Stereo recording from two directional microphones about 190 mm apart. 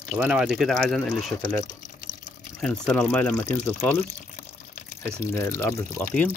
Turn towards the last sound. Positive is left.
turn(degrees=10)  # may be behind; listen again after turning